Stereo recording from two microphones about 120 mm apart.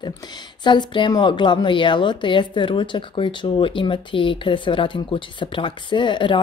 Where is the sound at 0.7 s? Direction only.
40° left (ahead or behind).